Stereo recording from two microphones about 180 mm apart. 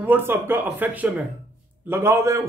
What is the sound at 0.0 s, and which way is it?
Speech, 10° right (ahead or behind).